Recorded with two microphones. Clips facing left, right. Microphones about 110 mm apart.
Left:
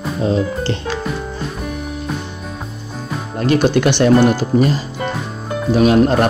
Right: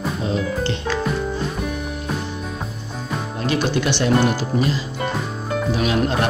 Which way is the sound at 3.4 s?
50° left (ahead or behind).